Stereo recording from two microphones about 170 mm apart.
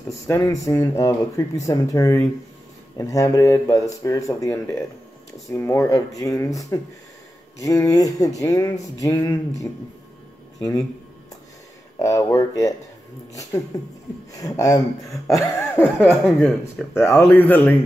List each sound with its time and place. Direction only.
0.3 s speech: 20° left (ahead or behind)
12.0 s speech: 20° left (ahead or behind)
13.7 s speech: 20° left (ahead or behind)
16.1 s speech: centre (ahead or behind)